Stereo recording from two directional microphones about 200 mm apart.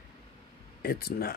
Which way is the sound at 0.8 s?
50° left (ahead or behind).